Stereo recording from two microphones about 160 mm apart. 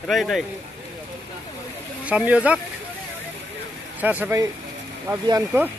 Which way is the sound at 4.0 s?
10° right (ahead or behind).